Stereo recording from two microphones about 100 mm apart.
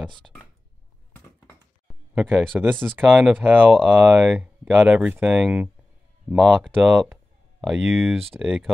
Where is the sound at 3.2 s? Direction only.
10° right (ahead or behind).